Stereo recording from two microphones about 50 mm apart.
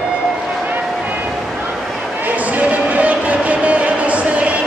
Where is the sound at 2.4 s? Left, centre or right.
Right.